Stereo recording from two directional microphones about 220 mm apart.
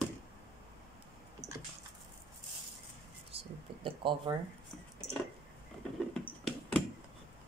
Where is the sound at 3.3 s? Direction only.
25° right (ahead or behind).